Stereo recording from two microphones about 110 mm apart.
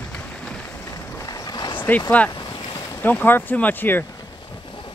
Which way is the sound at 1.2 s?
35° left (ahead or behind).